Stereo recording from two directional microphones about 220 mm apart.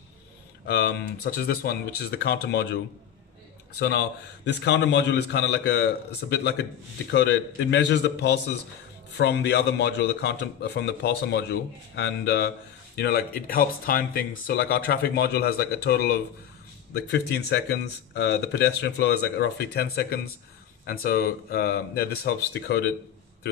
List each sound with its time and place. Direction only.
0.7 s a man's voice: 45° left (ahead or behind)
3.8 s a man's voice: 45° left (ahead or behind)